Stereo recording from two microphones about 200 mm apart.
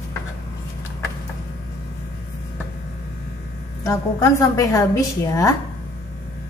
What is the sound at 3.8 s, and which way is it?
A woman's voice, 15° left (ahead or behind).